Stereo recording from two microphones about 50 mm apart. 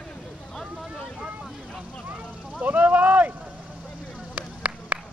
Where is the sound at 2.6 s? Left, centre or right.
Right.